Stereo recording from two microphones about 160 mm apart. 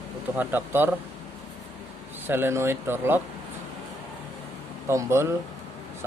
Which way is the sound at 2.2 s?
15° right (ahead or behind).